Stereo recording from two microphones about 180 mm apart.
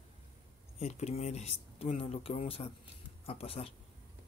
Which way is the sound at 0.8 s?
40° left (ahead or behind).